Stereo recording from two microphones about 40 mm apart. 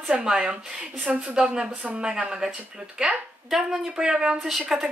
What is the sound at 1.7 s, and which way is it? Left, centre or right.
Speech, right.